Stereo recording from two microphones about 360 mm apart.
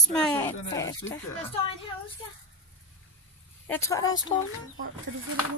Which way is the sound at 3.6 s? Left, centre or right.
Centre.